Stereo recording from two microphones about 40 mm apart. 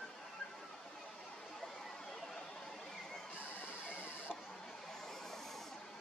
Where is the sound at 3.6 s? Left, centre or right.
Left.